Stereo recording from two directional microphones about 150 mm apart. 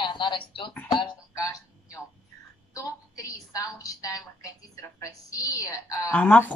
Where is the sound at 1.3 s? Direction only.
20° left (ahead or behind).